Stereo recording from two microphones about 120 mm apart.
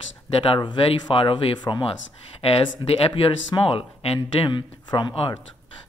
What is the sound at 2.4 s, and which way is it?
Speech, 55° left (ahead or behind).